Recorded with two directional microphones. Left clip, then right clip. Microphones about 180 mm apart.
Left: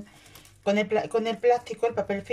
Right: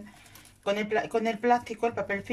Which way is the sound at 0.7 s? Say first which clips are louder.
Left 3 dB; centre (ahead or behind).